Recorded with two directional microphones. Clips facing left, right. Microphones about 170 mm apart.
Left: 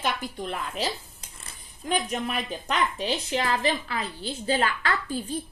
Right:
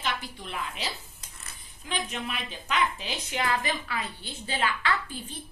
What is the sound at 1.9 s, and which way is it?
A woman's voice, 45° left (ahead or behind).